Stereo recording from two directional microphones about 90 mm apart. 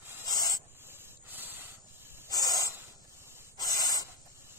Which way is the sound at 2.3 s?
40° left (ahead or behind).